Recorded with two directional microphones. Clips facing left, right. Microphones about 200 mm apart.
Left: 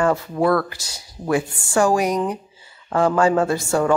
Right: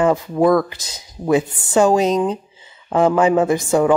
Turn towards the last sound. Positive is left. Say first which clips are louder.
# right 4 dB
turn(degrees=-15)  # may be behind; listen again after turning